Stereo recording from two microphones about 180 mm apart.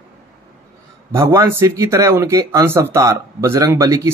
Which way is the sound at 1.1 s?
15° right (ahead or behind).